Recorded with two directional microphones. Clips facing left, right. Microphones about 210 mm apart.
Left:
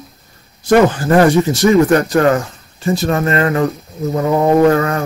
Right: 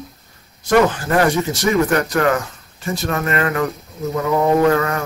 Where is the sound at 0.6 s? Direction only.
30° left (ahead or behind).